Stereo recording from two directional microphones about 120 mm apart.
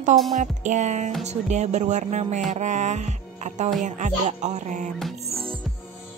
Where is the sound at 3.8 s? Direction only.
90° right.